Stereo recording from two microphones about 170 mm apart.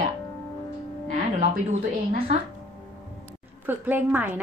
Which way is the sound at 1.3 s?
40° right (ahead or behind).